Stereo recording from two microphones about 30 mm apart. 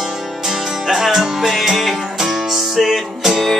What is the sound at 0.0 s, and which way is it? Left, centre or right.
Music, centre.